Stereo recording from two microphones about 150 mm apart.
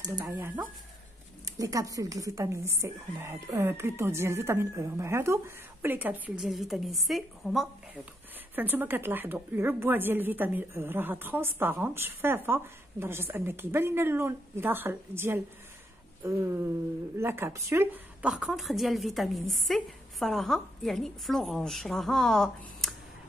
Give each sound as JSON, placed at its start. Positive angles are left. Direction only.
{"t": 0.2, "sound": "a woman's voice", "side_deg": -15}
{"t": 8.5, "sound": "a woman's voice", "side_deg": -15}